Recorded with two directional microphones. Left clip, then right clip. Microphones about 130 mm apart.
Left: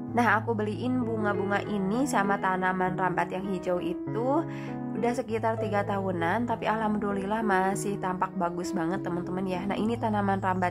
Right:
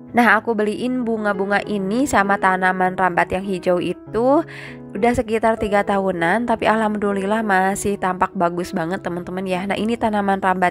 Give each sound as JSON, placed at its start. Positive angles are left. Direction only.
{"t": 0.1, "sound": "speech", "side_deg": -40}